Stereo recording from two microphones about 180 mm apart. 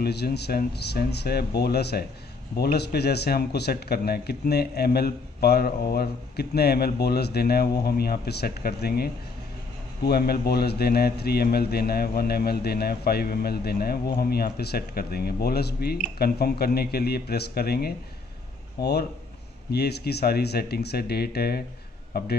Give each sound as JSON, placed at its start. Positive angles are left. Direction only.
{"t": 0.0, "sound": "a man's voice", "side_deg": 65}